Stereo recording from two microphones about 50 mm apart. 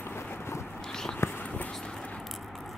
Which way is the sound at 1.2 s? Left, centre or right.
Left.